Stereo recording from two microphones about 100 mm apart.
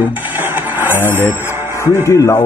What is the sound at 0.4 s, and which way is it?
Music, 20° right (ahead or behind).